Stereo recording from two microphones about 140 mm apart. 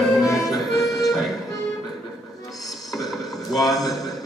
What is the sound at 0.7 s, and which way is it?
Music, centre (ahead or behind).